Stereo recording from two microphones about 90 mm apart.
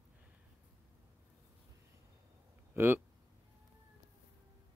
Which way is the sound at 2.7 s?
25° right (ahead or behind).